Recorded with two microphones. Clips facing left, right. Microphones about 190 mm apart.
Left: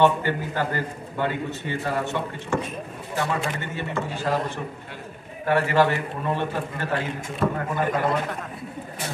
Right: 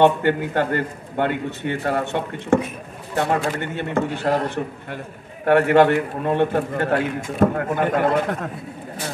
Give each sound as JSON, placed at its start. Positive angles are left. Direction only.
{"t": 0.0, "sound": "a man's voice", "side_deg": -60}
{"t": 5.4, "sound": "a man's voice", "side_deg": -60}